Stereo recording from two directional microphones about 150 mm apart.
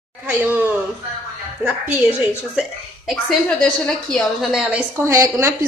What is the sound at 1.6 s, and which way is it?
Speech, 10° right (ahead or behind).